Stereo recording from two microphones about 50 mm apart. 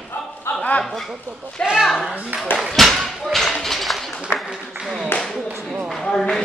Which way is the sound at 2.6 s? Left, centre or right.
Centre.